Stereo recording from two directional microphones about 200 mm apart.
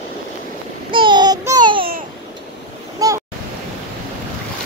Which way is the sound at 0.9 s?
25° right (ahead or behind).